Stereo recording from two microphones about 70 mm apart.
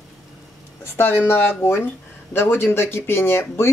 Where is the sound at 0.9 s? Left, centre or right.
Left.